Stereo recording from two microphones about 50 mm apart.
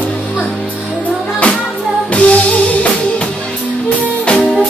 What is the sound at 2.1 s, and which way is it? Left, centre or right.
Music, left.